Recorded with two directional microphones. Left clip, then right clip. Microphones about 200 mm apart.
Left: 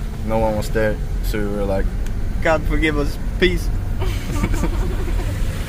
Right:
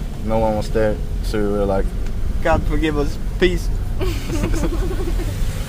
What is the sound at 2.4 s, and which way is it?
Speech, 5° right (ahead or behind).